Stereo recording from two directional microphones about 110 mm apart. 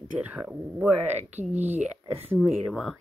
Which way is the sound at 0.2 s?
10° right (ahead or behind).